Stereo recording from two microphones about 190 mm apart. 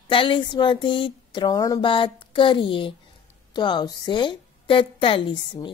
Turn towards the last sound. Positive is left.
turn(degrees=25)  # may be behind; listen again after turning